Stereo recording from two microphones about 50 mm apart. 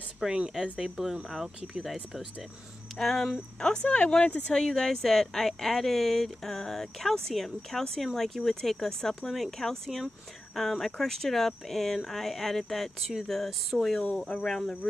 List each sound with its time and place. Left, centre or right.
0.2 s speech: centre
3.0 s speech: centre
3.5 s speech: centre
4.6 s speech: centre